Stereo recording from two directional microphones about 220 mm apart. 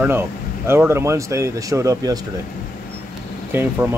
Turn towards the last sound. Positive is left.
turn(degrees=-10)  # may be behind; listen again after turning